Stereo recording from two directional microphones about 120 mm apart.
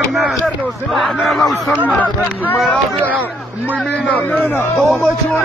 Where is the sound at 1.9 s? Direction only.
10° left (ahead or behind).